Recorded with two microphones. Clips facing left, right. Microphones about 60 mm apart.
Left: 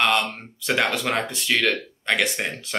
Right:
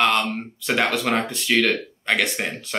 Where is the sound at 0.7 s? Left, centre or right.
Centre.